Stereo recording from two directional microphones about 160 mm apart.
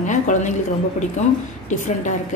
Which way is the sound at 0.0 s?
50° left (ahead or behind).